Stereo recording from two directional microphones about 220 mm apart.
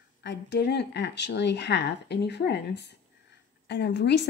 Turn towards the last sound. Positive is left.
turn(degrees=50)  # may be behind; listen again after turning